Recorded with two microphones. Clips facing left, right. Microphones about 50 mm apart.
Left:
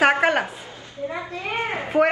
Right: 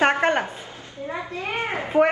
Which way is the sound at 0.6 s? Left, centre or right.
Right.